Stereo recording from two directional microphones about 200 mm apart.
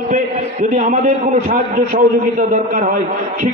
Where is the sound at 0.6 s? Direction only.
40° right (ahead or behind).